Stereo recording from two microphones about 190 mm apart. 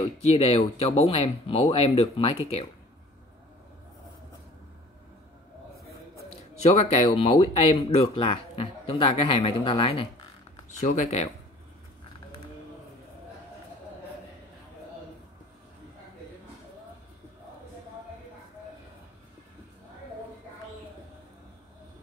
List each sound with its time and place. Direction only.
0.2 s speech: 30° left (ahead or behind)
6.6 s speech: 35° left (ahead or behind)
10.8 s speech: 40° left (ahead or behind)